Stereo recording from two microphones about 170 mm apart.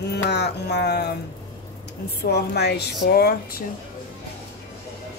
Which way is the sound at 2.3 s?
75° left (ahead or behind).